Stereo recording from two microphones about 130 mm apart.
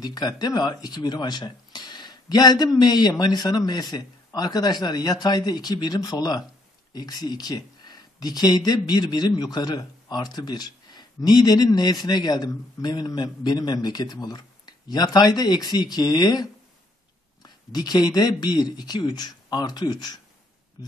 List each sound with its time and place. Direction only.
0.0 s speech: 30° left (ahead or behind)